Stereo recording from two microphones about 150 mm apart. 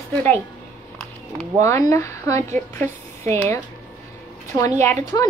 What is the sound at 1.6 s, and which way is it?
Speech, 20° left (ahead or behind).